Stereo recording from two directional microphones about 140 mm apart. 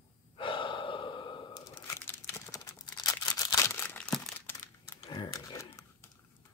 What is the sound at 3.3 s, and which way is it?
Single-lens reflex camera, 25° left (ahead or behind).